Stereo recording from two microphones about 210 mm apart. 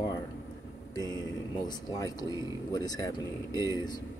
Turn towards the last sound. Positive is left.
turn(degrees=-15)  # may be behind; listen again after turning